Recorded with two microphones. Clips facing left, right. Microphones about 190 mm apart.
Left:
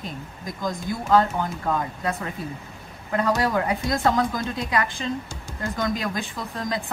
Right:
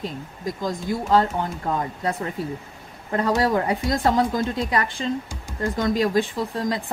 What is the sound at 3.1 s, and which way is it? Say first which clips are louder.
Speech: right 2 dB; 30° right (ahead or behind).